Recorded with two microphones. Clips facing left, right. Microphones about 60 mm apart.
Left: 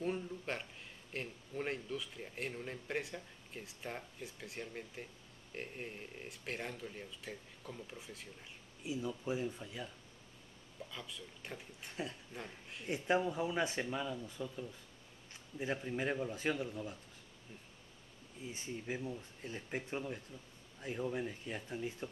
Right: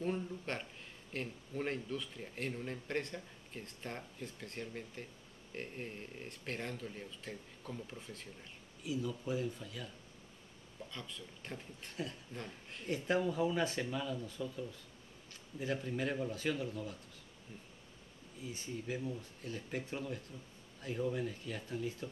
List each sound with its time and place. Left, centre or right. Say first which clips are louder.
0.0 s a sound: right 1 dB; centre
1.1 s speech: right 1 dB; centre
8.8 s speech: right 1 dB; left
10.9 s speech: right 1 dB; centre
11.9 s speech: even; left
12.4 s speech: right 2 dB; centre
12.9 s speech: even; centre
15.6 s speech: even; left
18.4 s speech: right 1 dB; left